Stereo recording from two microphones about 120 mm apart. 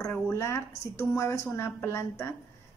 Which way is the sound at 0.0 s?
25° left (ahead or behind).